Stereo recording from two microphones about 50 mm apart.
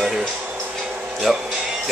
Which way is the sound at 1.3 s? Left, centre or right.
Centre.